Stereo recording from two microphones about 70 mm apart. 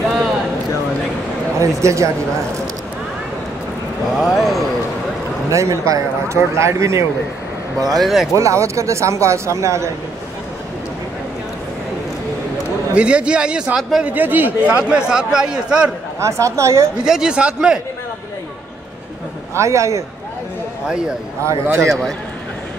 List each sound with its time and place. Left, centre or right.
1.6 s a man's voice: right
4.1 s speech: centre
5.5 s a man's voice: right
8.0 s speech: centre
8.4 s a man's voice: right
12.9 s speech: centre
14.0 s a man's voice: right
14.8 s speech: centre
16.2 s a man's voice: right
17.0 s speech: centre
19.5 s a man's voice: right
21.5 s a man's voice: right
21.8 s a man's voice: centre